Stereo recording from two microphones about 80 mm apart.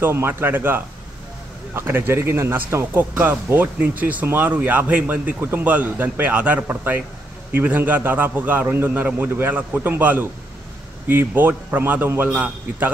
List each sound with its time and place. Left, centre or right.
0.0 s speech: right